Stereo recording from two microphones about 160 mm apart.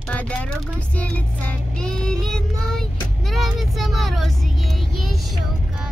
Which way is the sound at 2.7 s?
Centre (ahead or behind).